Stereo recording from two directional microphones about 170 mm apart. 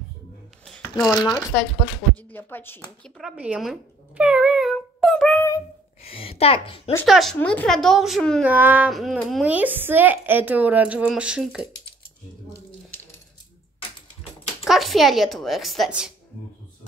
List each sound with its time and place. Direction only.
0.9 s speech: 5° left (ahead or behind)
3.0 s speech: centre (ahead or behind)
4.2 s a sound: 5° right (ahead or behind)
6.0 s a woman's voice: 35° left (ahead or behind)
7.1 s speech: centre (ahead or behind)
8.5 s speech: 10° right (ahead or behind)
14.6 s speech: centre (ahead or behind)